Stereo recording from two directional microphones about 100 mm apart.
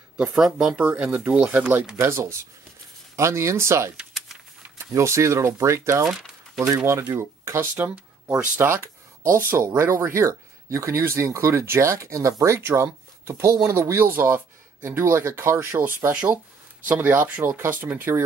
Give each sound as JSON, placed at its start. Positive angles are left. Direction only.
{"t": 0.2, "sound": "speech", "side_deg": -5}
{"t": 2.0, "sound": "speech", "side_deg": -25}
{"t": 3.9, "sound": "typing", "side_deg": -10}
{"t": 4.6, "sound": "speech", "side_deg": -25}
{"t": 6.0, "sound": "crumpling", "side_deg": -5}
{"t": 6.9, "sound": "speech", "side_deg": -25}
{"t": 7.7, "sound": "speech", "side_deg": -15}
{"t": 8.5, "sound": "speech", "side_deg": -25}